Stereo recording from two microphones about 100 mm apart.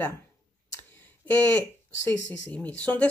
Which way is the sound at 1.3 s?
20° left (ahead or behind).